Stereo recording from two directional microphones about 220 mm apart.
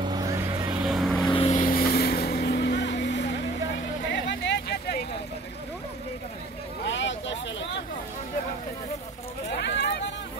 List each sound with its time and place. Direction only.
0.0 s vehicle: 20° right (ahead or behind)
0.7 s vehicle: centre (ahead or behind)
1.3 s vehicle: 25° left (ahead or behind); by 5.0 s 45° left (ahead or behind)
6.9 s vehicle: 55° left (ahead or behind)
9.5 s a sound: 50° left (ahead or behind)